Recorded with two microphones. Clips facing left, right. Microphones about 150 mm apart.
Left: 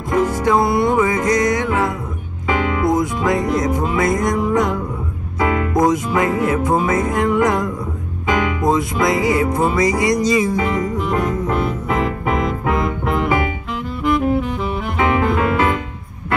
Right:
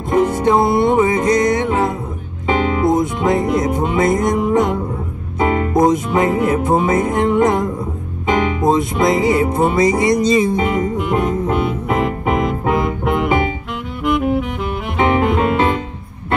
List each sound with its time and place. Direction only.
0.1 s music: 25° right (ahead or behind)
12.7 s music: centre (ahead or behind)
14.0 s saxophone: centre (ahead or behind)
15.0 s music: 25° right (ahead or behind)